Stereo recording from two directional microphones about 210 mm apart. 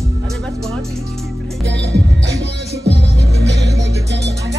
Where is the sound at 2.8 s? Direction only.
55° right (ahead or behind).